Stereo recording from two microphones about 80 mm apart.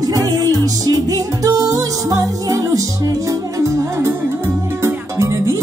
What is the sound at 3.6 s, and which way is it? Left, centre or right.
Music, right.